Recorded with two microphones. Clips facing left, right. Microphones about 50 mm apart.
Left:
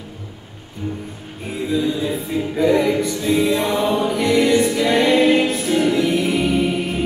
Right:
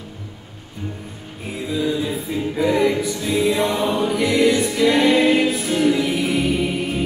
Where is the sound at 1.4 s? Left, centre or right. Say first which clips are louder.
Left 3 dB; centre.